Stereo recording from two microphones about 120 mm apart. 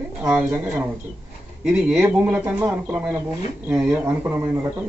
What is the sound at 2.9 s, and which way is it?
Speech, 5° right (ahead or behind).